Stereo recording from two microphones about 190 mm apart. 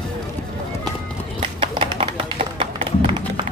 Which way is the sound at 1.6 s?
30° right (ahead or behind).